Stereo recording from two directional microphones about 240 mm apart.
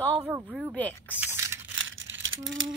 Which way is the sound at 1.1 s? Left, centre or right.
Centre.